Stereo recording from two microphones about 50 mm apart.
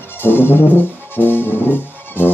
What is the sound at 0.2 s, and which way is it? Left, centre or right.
Brass instrument, left.